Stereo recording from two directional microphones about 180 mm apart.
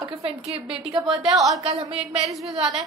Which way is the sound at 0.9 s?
5° right (ahead or behind).